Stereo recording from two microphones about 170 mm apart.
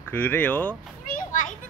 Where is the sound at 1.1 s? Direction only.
50° left (ahead or behind).